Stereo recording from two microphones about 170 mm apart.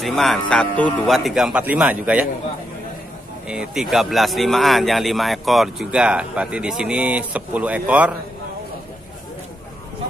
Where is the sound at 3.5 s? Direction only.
5° right (ahead or behind).